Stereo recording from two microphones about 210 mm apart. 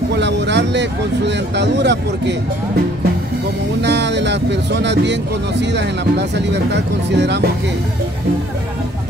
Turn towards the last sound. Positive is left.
turn(degrees=-55)  # may be behind; listen again after turning